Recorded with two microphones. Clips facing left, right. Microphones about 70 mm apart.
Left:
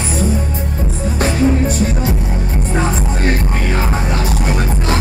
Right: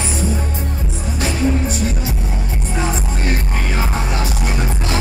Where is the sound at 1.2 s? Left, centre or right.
Left.